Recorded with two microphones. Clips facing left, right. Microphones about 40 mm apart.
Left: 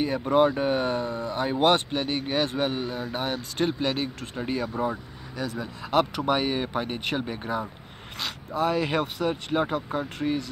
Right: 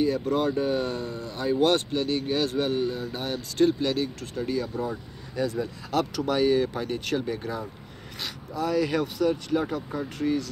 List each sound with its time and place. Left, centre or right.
0.0 s speech: left